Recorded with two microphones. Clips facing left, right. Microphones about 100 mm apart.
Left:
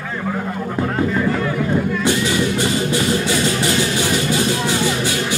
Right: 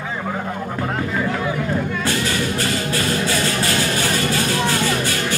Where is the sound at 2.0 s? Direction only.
15° left (ahead or behind).